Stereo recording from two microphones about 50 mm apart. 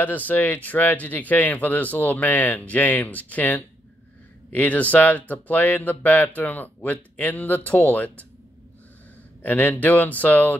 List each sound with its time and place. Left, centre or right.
0.0 s speech: left
9.4 s speech: left